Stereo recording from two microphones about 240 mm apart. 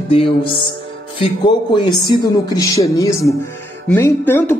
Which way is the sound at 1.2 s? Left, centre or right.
Centre.